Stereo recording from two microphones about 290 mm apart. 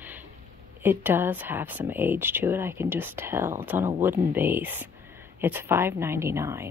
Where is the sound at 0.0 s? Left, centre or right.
Centre.